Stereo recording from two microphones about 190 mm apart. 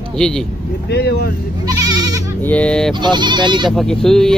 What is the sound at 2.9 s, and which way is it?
Speech, 25° right (ahead or behind).